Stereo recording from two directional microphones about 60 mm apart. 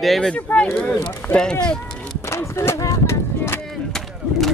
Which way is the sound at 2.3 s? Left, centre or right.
Left.